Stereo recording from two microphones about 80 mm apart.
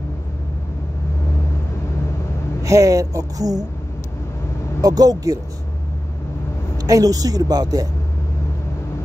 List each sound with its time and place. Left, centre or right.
2.6 s a woman's voice: right
4.8 s a woman's voice: right
6.8 s a woman's voice: right